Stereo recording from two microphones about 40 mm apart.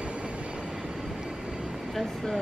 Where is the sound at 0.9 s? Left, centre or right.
Centre.